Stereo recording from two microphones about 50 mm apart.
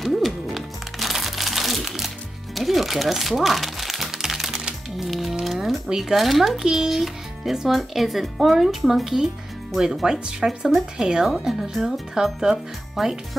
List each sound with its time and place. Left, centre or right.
0.0 s music: centre
5.4 s a sound: centre
5.9 s a child's voice: centre
11.2 s speech: centre